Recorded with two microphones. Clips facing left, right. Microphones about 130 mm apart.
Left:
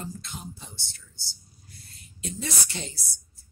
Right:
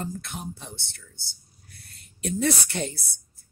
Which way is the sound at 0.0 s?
60° right (ahead or behind).